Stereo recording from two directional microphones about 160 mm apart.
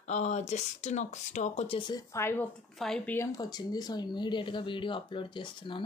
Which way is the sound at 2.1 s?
15° left (ahead or behind).